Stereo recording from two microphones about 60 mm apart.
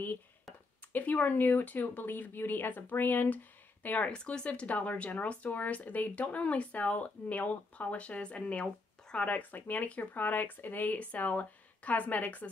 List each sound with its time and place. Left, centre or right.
0.9 s speech: left
4.1 s speech: centre